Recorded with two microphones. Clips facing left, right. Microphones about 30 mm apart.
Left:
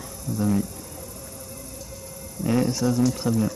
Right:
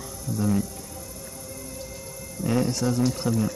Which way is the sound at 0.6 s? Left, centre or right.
Left.